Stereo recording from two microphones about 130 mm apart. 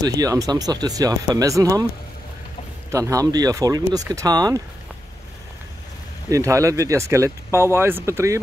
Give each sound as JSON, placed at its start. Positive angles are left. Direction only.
{"t": 0.0, "sound": "speech", "side_deg": -30}
{"t": 2.9, "sound": "speech", "side_deg": -25}
{"t": 6.3, "sound": "speech", "side_deg": -25}